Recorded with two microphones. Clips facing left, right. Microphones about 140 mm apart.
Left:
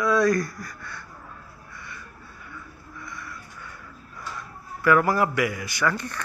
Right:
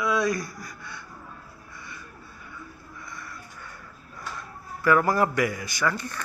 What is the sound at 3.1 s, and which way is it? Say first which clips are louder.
Music: left 2 dB; 25° right (ahead or behind).